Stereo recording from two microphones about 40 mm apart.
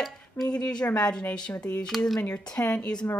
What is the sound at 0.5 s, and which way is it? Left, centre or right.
Speech, left.